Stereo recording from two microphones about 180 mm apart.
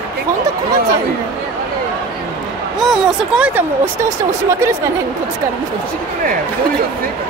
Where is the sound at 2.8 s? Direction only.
5° right (ahead or behind).